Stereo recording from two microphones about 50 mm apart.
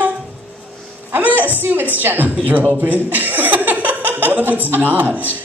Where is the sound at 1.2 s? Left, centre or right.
Right.